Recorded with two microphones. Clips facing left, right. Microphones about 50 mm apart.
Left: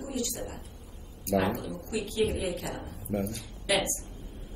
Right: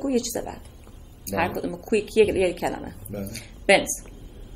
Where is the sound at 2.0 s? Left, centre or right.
Right.